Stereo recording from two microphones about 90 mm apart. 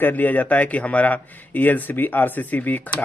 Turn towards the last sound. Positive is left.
turn(degrees=20)  # may be behind; listen again after turning